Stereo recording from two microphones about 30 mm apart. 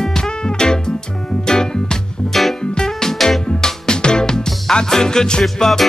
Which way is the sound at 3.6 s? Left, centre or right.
Left.